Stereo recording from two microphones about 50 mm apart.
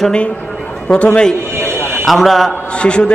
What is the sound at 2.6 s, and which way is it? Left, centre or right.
Speech, left.